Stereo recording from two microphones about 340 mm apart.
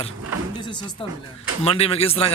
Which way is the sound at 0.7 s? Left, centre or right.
Centre.